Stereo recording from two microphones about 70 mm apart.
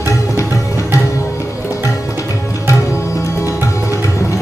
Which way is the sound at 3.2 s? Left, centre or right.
Left.